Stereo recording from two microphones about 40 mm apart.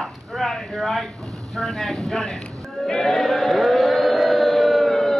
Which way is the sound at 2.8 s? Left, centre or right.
Centre.